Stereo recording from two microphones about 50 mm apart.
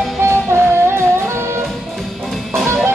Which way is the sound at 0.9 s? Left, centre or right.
Right.